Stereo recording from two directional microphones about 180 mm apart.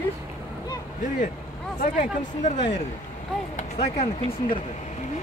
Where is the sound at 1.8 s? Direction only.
40° left (ahead or behind).